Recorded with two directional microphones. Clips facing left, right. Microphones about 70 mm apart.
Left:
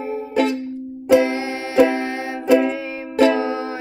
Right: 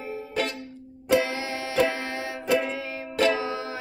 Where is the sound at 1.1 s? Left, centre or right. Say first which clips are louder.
Left 8 dB; left.